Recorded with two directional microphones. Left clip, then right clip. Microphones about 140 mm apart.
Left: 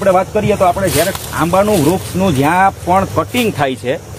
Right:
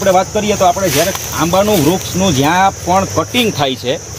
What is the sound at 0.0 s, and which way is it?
Speech, centre (ahead or behind).